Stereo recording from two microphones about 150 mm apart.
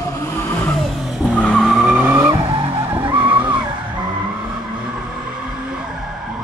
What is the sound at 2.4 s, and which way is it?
Vehicle, 35° right (ahead or behind).